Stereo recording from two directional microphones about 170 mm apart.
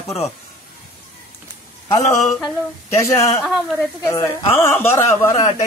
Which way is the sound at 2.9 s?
15° left (ahead or behind).